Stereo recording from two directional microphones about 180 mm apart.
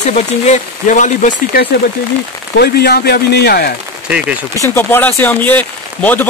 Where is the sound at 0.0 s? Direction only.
40° left (ahead or behind); by 3.7 s 60° left (ahead or behind).